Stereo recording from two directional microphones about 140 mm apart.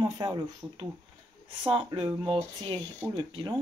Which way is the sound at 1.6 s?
35° right (ahead or behind).